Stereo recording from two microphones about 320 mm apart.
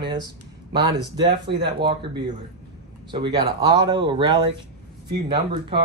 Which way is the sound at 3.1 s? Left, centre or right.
Centre.